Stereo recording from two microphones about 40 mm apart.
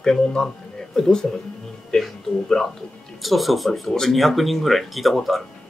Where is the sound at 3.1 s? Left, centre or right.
Centre.